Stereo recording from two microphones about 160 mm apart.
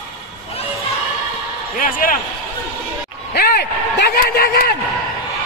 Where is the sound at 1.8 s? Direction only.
60° left (ahead or behind).